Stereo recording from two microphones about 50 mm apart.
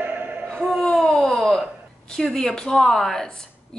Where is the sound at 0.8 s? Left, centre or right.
Centre.